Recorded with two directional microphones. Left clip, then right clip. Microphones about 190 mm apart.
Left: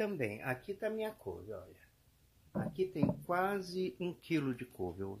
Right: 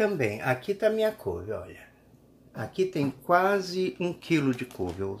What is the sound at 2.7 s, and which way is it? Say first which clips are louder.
Speech: right 9 dB; 25° left (ahead or behind).